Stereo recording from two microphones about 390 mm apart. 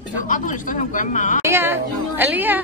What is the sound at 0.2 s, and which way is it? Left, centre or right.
A woman's voice, centre.